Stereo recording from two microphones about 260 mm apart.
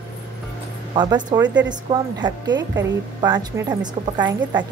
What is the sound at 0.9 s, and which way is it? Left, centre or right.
A woman's voice, centre.